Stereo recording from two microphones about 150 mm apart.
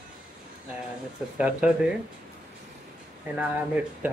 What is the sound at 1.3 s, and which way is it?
Speech, 10° right (ahead or behind).